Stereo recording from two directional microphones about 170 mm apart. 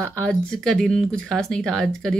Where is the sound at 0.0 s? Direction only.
5° left (ahead or behind).